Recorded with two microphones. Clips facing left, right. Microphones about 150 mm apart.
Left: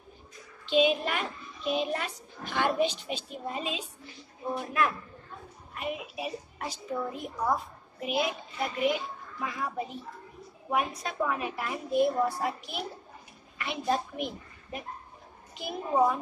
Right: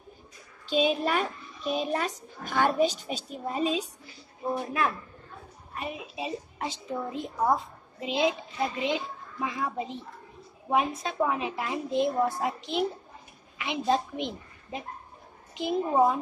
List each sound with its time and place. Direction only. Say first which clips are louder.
0.7 s speech: even; 40° right (ahead or behind)
5.8 s a woman's voice: even; 30° right (ahead or behind)